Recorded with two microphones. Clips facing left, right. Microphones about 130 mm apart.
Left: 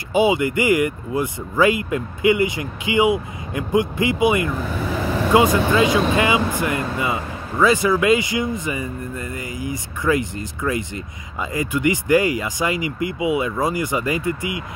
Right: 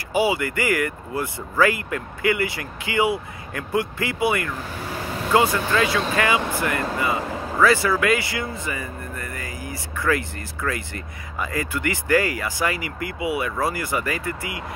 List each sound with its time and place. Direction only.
0.1 s speech: 20° left (ahead or behind)